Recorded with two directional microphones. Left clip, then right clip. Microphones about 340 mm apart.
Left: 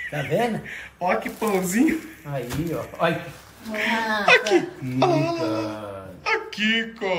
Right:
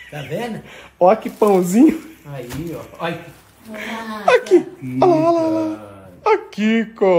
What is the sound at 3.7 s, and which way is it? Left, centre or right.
Speech, centre.